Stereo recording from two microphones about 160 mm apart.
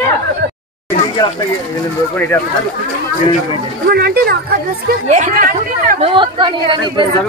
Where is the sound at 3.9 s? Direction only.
75° right (ahead or behind).